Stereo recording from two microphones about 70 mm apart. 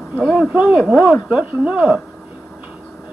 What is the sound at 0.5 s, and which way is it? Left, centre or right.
Speech, centre.